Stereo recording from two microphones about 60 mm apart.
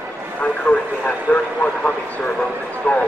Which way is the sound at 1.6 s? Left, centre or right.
Left.